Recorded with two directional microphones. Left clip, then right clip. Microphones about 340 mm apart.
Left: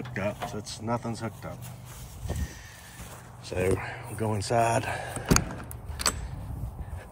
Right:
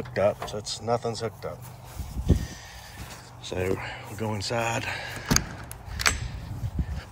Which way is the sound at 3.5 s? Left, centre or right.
Centre.